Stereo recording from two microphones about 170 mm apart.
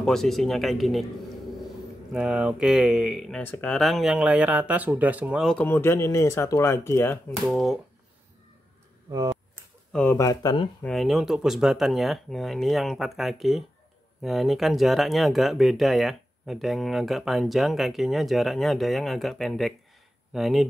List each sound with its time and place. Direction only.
0.0 s speech: centre (ahead or behind)
2.1 s speech: 5° right (ahead or behind)
5.5 s speech: 10° left (ahead or behind)
7.4 s speech: centre (ahead or behind)
9.1 s speech: 20° right (ahead or behind)
9.9 s speech: 15° left (ahead or behind)
10.8 s speech: centre (ahead or behind)